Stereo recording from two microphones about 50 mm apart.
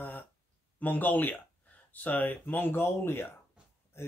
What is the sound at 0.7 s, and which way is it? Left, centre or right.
Speech, left.